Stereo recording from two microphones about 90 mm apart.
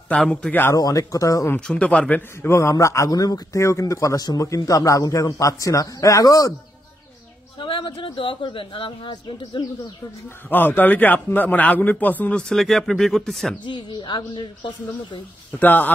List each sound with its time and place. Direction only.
0.1 s a man's voice: 10° left (ahead or behind)
0.7 s speech: 45° left (ahead or behind)
1.7 s a man's voice: 15° left (ahead or behind)
2.4 s speech: 30° left (ahead or behind)
7.5 s speech: 70° left (ahead or behind)
10.5 s a man's voice: 20° left (ahead or behind); by 13.6 s 5° left (ahead or behind)
13.7 s speech: 60° left (ahead or behind)
15.6 s a man's voice: 20° left (ahead or behind)